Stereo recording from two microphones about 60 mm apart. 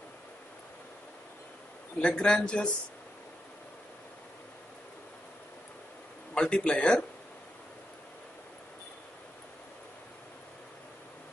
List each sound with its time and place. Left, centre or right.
2.0 s a man's voice: centre
6.3 s a man's voice: centre